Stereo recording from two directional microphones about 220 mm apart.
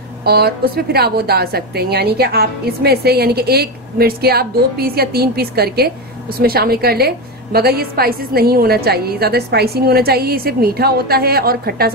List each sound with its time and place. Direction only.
0.2 s a woman's voice: 45° right (ahead or behind)